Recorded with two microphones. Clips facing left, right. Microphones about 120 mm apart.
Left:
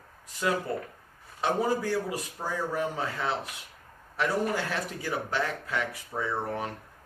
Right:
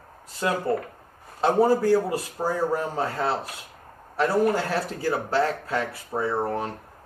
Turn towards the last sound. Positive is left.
turn(degrees=-40)  # may be behind; listen again after turning